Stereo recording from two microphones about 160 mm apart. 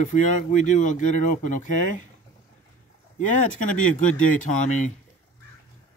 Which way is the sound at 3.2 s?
55° left (ahead or behind).